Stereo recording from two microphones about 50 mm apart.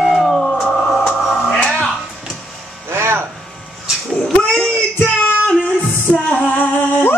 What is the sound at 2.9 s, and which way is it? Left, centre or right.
Music, right.